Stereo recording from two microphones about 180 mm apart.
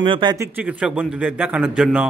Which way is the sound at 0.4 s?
10° right (ahead or behind).